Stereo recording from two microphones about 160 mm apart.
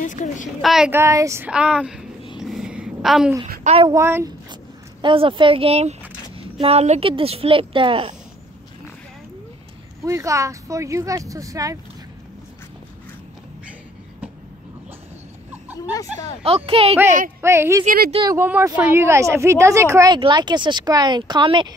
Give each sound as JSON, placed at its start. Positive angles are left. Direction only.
{"t": 0.0, "sound": "a woman's voice", "side_deg": 50}
{"t": 0.6, "sound": "a woman's voice", "side_deg": 0}
{"t": 0.9, "sound": "speech", "side_deg": -20}
{"t": 1.5, "sound": "a woman's voice", "side_deg": -5}
{"t": 2.3, "sound": "a sound", "side_deg": -5}
{"t": 3.6, "sound": "speech", "side_deg": -35}
{"t": 3.9, "sound": "speech", "side_deg": -15}
{"t": 5.0, "sound": "speech", "side_deg": -30}
{"t": 10.0, "sound": "speech", "side_deg": -20}
{"t": 16.4, "sound": "speech", "side_deg": -35}
{"t": 17.4, "sound": "speech", "side_deg": -15}
{"t": 17.8, "sound": "speech", "side_deg": -70}
{"t": 18.3, "sound": "speech", "side_deg": -15}